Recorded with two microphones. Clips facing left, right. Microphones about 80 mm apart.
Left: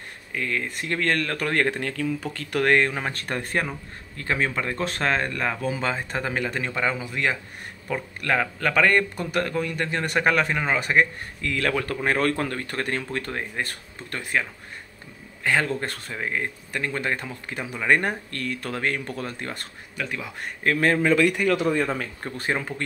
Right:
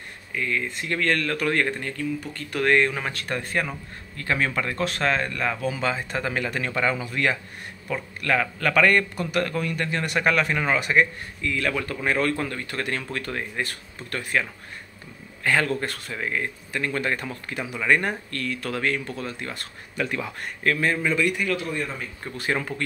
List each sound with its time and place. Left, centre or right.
0.3 s speech: left
1.7 s speech: left
2.6 s speech: left
4.2 s speech: left
11.4 s speech: left
17.8 s speech: left
20.0 s speech: centre
20.8 s a man's voice: left
21.4 s speech: left
22.5 s speech: left